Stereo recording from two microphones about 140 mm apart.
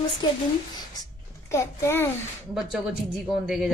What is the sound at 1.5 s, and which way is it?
Speech, 20° left (ahead or behind).